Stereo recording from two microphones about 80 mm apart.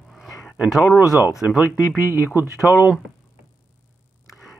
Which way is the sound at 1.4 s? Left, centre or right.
Right.